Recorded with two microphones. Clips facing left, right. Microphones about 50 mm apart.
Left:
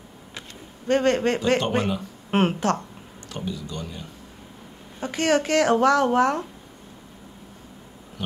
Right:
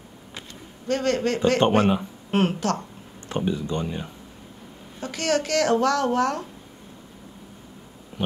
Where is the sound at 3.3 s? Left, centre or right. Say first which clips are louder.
Right 6 dB; right.